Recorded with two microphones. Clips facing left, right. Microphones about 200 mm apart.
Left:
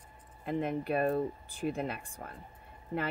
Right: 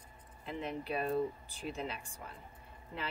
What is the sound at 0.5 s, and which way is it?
Speech, 55° left (ahead or behind).